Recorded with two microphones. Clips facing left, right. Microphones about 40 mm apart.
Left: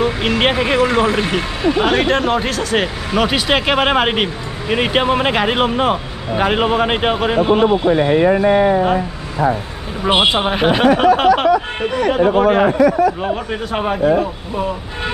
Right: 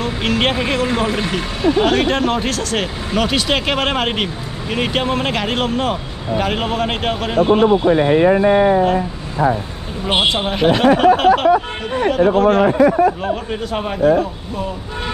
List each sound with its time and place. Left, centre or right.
0.0 s speech: centre
9.4 s speech: centre
10.2 s speech: centre
11.5 s speech: right
12.1 s speech: centre
12.7 s speech: right
13.2 s speech: centre